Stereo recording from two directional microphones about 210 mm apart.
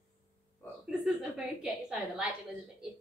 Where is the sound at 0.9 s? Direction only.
5° right (ahead or behind).